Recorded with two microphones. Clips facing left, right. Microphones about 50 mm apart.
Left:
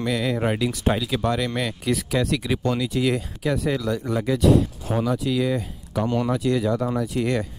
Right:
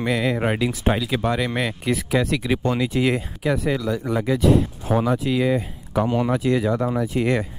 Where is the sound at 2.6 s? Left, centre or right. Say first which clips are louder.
Right 1 dB; right.